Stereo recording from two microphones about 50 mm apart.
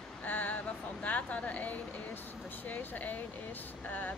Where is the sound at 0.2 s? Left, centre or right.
Left.